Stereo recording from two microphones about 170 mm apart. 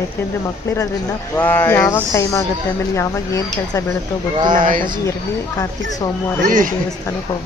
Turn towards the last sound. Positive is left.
turn(degrees=-50)  # may be behind; listen again after turning